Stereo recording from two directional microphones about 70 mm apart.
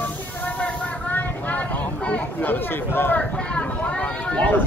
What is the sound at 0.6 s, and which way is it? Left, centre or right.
Vehicle, centre.